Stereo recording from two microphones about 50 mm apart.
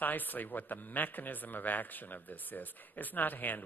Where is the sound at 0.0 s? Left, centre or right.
Left.